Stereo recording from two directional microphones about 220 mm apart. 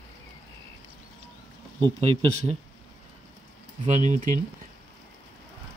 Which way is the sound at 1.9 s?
30° right (ahead or behind).